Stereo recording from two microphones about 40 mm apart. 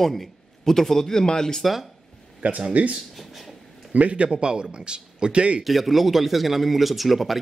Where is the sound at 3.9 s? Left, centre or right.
Right.